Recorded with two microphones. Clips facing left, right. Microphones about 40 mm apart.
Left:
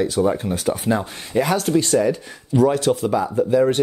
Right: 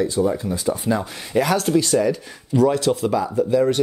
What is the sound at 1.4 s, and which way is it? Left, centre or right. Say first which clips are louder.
Speech: even; centre.